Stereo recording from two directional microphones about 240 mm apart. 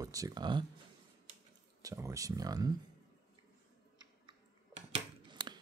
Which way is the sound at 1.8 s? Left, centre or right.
Centre.